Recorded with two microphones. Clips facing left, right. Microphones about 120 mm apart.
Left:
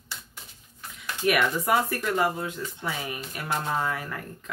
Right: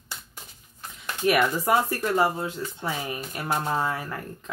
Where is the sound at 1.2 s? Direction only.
30° right (ahead or behind).